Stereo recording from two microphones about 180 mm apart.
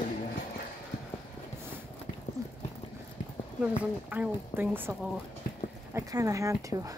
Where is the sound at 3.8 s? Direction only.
10° right (ahead or behind).